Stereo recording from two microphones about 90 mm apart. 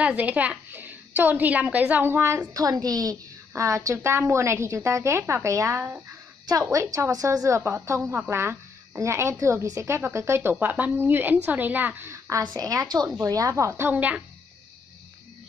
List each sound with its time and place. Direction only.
0.0 s a woman's voice: 15° right (ahead or behind)
6.4 s a woman's voice: 40° right (ahead or behind)
10.5 s a woman's voice: 20° right (ahead or behind)
12.1 s a woman's voice: 35° right (ahead or behind)